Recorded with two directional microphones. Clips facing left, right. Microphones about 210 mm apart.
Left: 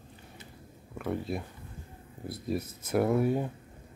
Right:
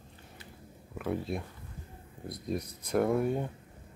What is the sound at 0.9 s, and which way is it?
Speech, centre (ahead or behind).